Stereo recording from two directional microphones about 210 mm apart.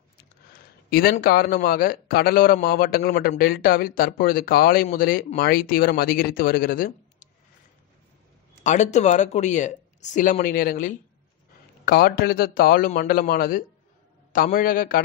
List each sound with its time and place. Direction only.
0.5 s speech: 45° left (ahead or behind)
8.6 s speech: 35° left (ahead or behind)